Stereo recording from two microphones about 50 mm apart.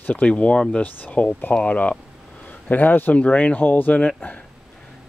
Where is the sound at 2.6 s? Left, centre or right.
Left.